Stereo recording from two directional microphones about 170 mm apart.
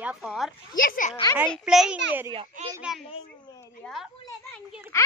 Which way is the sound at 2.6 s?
45° right (ahead or behind).